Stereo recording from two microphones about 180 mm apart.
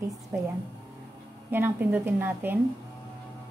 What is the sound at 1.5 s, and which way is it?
A woman's voice, 10° right (ahead or behind).